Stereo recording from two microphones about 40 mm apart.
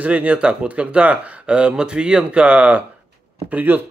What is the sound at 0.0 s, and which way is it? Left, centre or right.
Speech, right.